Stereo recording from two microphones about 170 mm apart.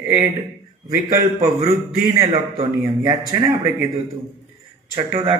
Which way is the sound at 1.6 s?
25° right (ahead or behind).